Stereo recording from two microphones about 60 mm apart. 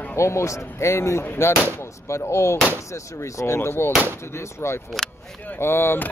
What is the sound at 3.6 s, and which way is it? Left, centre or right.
Speech, left.